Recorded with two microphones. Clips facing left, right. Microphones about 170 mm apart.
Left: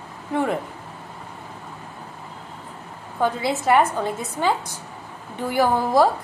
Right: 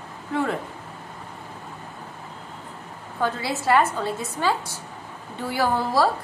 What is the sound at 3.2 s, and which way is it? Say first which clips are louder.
A woman's voice: left 4 dB; 20° left (ahead or behind).